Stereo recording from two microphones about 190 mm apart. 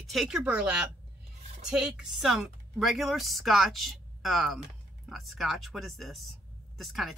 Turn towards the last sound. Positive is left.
turn(degrees=0)  # may be behind; listen again after turning